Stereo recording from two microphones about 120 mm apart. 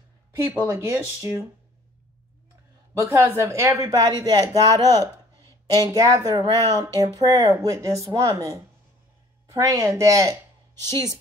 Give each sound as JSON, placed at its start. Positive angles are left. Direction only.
{"t": 0.4, "sound": "speech", "side_deg": -25}
{"t": 3.0, "sound": "a woman's voice", "side_deg": -25}